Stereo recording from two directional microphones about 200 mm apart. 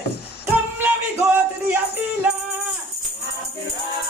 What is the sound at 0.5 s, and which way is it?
Music, 10° right (ahead or behind).